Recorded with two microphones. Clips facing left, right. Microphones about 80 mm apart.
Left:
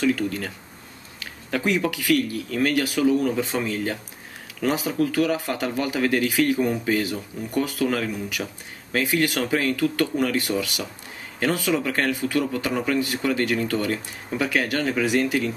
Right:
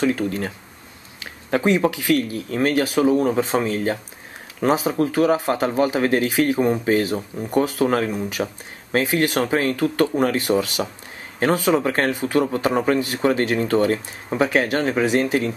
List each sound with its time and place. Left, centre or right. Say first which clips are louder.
0.0 s a man's voice: right 2 dB; right